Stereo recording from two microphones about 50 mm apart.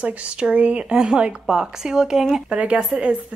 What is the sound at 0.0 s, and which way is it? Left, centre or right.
A woman's voice, right.